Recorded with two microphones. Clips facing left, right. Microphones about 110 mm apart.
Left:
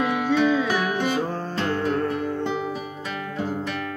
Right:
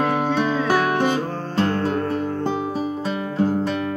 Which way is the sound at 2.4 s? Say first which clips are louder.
Right 4 dB; 35° right (ahead or behind).